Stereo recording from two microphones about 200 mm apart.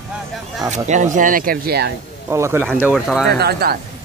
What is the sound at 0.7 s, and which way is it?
Speech, 35° right (ahead or behind).